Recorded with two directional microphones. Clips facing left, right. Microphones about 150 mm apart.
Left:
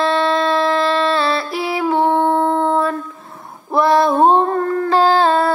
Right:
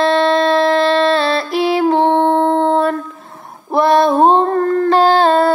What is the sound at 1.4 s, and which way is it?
Music, 30° right (ahead or behind).